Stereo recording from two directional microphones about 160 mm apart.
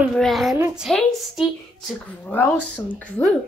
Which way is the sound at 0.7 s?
Centre (ahead or behind).